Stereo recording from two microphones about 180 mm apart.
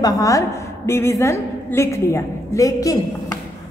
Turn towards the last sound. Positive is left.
turn(degrees=20)  # may be behind; listen again after turning